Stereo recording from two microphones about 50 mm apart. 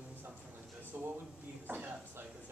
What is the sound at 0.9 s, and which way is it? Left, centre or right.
Speech, right.